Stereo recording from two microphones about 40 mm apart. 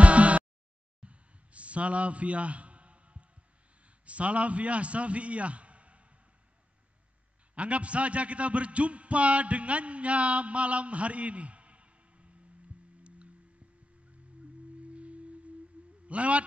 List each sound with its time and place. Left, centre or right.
0.0 s a sound: right
3.8 s a man's voice: right
7.5 s a man's voice: right
14.8 s singing bowl: right
15.8 s a sound: right
16.1 s a man's voice: right